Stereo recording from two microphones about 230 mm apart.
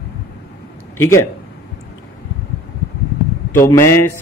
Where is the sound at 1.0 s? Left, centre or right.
Centre.